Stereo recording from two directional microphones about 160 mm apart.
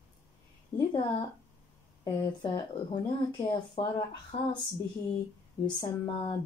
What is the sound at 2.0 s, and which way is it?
Speech, 25° left (ahead or behind).